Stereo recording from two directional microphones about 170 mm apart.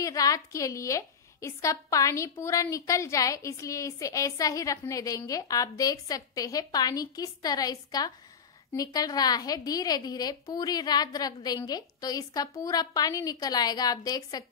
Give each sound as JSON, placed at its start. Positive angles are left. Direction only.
{"t": 0.0, "sound": "a woman's voice", "side_deg": 20}